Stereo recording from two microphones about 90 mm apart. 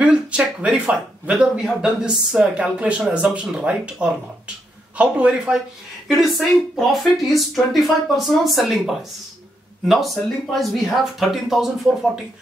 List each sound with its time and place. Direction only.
0.0 s speech: 10° right (ahead or behind)